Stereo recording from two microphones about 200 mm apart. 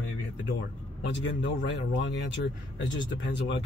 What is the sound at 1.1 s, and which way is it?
Speech, 65° left (ahead or behind).